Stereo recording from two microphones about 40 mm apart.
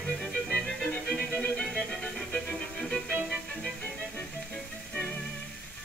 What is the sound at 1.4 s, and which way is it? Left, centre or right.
Music, left.